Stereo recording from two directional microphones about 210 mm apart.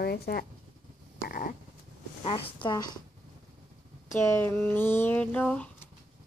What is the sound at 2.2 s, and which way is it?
Speech, 25° left (ahead or behind).